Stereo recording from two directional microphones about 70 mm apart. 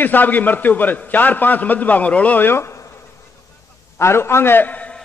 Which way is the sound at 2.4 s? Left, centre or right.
Left.